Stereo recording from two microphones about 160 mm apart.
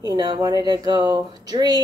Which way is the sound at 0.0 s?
25° right (ahead or behind).